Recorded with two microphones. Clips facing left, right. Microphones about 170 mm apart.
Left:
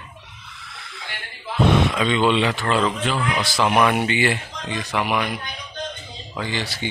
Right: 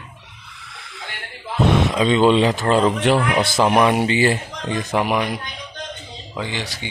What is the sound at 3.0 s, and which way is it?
Speech, 65° right (ahead or behind).